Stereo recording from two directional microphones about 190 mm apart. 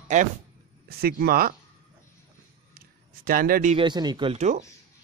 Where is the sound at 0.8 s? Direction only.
50° right (ahead or behind).